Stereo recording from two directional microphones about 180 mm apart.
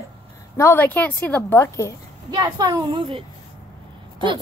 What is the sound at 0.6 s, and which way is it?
A woman's voice, 10° left (ahead or behind).